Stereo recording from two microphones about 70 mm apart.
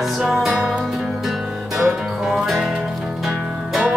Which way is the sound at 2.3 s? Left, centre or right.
Centre.